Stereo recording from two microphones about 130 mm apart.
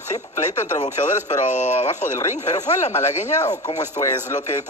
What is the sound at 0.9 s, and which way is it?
A man's voice, 70° left (ahead or behind).